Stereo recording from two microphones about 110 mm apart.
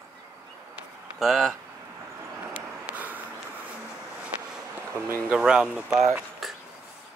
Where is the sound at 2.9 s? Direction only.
15° right (ahead or behind).